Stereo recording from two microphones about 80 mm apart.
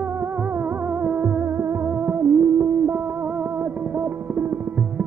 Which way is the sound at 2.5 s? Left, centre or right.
Right.